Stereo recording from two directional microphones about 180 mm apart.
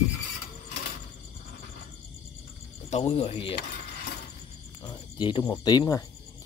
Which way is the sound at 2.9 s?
35° left (ahead or behind).